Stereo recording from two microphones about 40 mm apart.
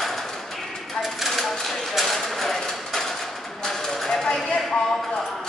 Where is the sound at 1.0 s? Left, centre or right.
Centre.